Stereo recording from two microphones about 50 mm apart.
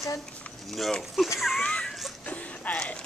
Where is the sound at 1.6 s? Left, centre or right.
Left.